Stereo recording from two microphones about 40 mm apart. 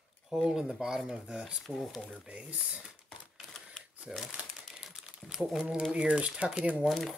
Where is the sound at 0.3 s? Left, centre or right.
Centre.